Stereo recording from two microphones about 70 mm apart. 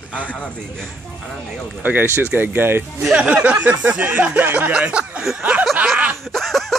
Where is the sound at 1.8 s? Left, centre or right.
Right.